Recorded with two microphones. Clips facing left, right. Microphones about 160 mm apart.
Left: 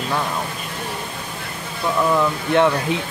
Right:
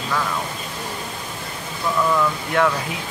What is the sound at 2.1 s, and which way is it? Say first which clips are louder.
Speech: left 3 dB; 25° left (ahead or behind).